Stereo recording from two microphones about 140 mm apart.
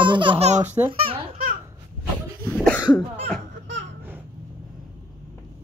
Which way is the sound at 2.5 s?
10° left (ahead or behind).